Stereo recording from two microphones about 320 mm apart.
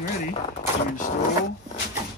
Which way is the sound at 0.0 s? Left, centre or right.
Left.